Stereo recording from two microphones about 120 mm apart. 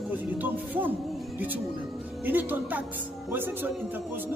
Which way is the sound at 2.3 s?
15° right (ahead or behind).